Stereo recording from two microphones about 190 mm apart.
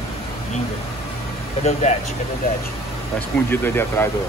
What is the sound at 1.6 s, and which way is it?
Speech, 40° left (ahead or behind).